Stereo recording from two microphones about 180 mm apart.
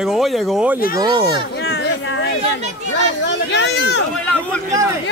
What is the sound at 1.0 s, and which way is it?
Speech, 20° right (ahead or behind).